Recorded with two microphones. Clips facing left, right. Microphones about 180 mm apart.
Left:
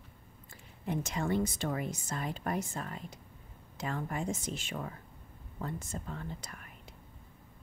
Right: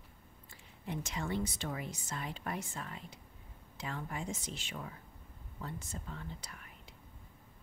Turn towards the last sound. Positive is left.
turn(degrees=50)  # may be behind; listen again after turning